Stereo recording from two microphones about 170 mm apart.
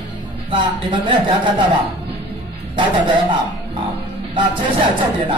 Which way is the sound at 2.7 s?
30° right (ahead or behind).